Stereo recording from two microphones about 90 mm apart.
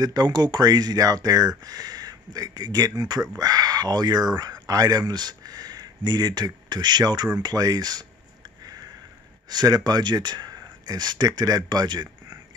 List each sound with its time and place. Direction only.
0.0 s speech: 50° right (ahead or behind)
8.6 s sniff: 45° right (ahead or behind)
9.5 s speech: 50° right (ahead or behind)